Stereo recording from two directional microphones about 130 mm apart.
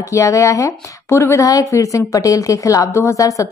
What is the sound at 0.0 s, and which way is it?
A woman's voice, 25° left (ahead or behind).